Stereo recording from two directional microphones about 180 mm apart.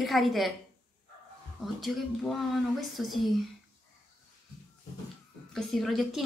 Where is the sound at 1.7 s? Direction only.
Centre (ahead or behind).